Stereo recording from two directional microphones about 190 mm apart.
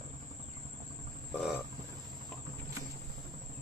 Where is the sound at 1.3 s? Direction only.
5° right (ahead or behind).